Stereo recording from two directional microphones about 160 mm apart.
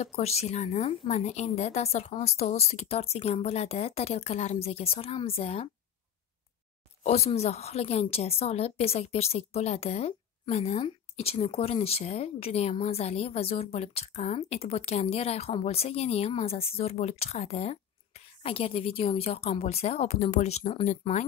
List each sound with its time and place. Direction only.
0.0 s speech: 40° left (ahead or behind)
7.0 s speech: 40° left (ahead or behind)